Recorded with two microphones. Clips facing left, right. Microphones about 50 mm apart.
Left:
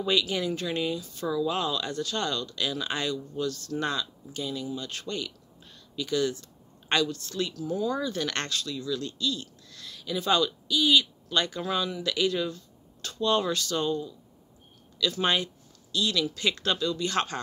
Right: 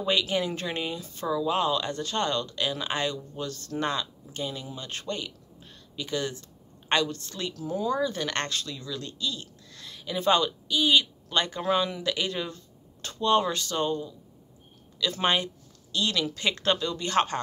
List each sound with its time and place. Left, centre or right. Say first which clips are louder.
0.0 s speech: right 1 dB; right
1.2 s speech: right 2 dB; right